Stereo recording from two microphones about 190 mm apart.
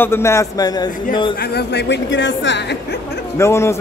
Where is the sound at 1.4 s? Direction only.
60° left (ahead or behind).